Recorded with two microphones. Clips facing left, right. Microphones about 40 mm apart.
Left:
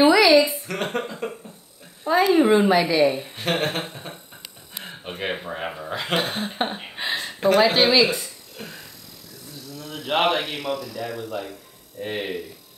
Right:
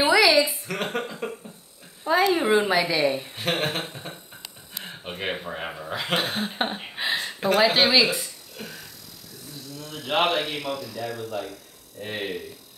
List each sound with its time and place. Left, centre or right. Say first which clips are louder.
0.0 s a woman's voice: left 4 dB; centre
9.8 s a man's voice: left 2 dB; centre
11.3 s a sound: left 1 dB; left